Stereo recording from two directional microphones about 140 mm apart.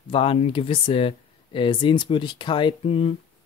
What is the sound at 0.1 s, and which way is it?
Speech, 40° left (ahead or behind).